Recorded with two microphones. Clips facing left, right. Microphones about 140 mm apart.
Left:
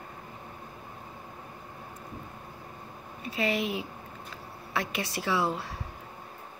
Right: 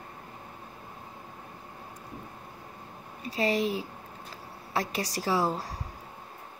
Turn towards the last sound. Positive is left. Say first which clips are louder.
# right 1 dB
turn(degrees=-40)  # may be behind; listen again after turning